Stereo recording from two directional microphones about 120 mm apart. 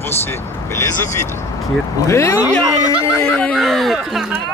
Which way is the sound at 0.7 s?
20° left (ahead or behind).